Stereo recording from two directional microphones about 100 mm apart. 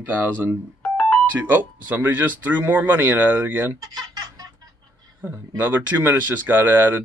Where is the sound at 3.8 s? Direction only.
40° right (ahead or behind).